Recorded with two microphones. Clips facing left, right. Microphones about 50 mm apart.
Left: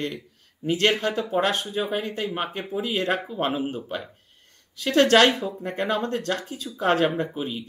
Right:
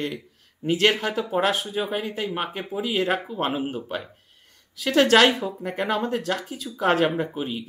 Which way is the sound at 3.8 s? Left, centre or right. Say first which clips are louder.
Right 1 dB; right.